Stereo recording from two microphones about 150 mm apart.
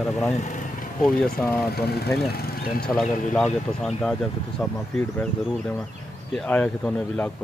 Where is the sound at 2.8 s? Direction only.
5° left (ahead or behind).